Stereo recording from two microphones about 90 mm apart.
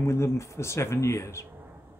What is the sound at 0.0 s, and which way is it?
Speech, 30° left (ahead or behind).